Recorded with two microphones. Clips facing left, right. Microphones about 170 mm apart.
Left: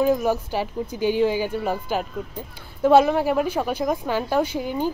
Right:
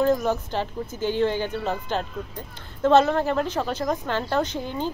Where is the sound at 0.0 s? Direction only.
10° left (ahead or behind).